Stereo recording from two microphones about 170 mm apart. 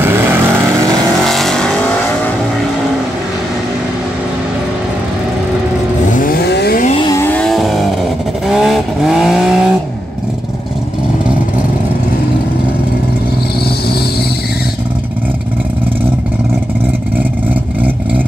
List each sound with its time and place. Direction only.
0.0 s vehicle: 15° right (ahead or behind)
1.2 s vehicle: centre (ahead or behind)
6.0 s vehicle: 55° left (ahead or behind); by 6.8 s 75° left (ahead or behind)
7.0 s vehicle: 20° left (ahead or behind)
7.2 s vehicle: 5° left (ahead or behind)